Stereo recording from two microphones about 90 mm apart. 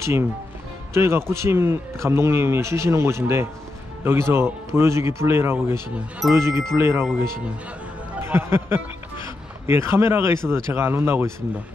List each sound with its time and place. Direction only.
0.0 s a man's voice: 30° right (ahead or behind)
8.2 s speech: 30° right (ahead or behind)